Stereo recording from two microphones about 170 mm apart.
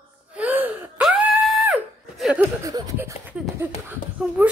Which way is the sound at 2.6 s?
20° right (ahead or behind).